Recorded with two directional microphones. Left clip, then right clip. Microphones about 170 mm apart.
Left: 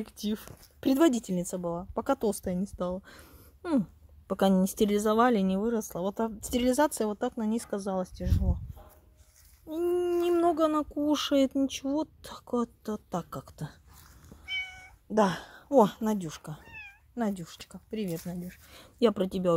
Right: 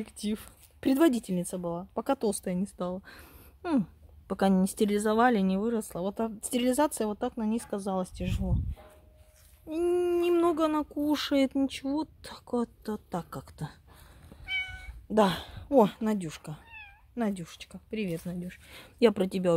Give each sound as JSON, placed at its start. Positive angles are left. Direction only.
{"t": 0.0, "sound": "speech", "side_deg": 5}
{"t": 7.7, "sound": "speech", "side_deg": -10}
{"t": 9.7, "sound": "speech", "side_deg": -5}
{"t": 14.4, "sound": "cat", "side_deg": 5}
{"t": 17.1, "sound": "speech", "side_deg": 0}